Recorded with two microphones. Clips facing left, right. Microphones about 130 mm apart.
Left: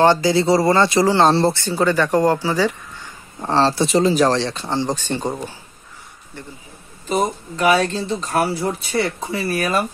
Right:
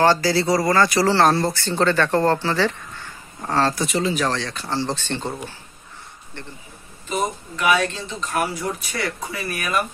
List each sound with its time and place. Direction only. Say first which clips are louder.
0.0 s speech: left 3 dB; 20° left (ahead or behind)
1.3 s speech: left 5 dB; 30° left (ahead or behind)
1.6 s speech: left 1 dB; 10° left (ahead or behind)
3.3 s speech: left 4 dB; 25° left (ahead or behind)
7.1 s speech: left 4 dB; 35° left (ahead or behind)